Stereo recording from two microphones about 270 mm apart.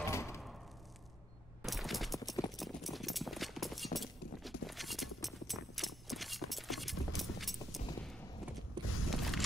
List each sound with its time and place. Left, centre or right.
0.1 s a sound: centre
1.6 s fusillade: centre
2.5 s clip-clop: centre
8.8 s mechanisms: centre
9.1 s vehicle: centre